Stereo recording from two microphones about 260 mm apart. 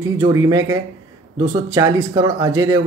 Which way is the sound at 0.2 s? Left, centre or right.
Centre.